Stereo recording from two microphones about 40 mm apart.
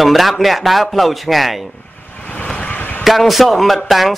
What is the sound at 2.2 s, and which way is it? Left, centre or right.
Vehicle, left.